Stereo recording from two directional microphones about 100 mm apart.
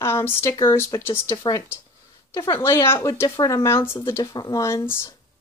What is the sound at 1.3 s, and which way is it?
Speech, 40° left (ahead or behind).